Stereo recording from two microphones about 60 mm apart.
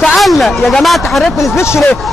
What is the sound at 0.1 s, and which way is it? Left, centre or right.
Speech, centre.